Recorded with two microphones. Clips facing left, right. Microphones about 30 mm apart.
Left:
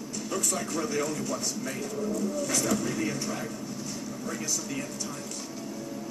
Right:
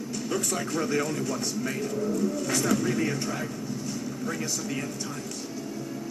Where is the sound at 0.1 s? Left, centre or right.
Right.